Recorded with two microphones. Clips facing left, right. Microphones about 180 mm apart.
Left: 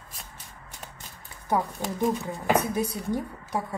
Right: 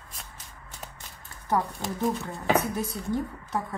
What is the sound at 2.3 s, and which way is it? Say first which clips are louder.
Speech: left 1 dB; 15° left (ahead or behind).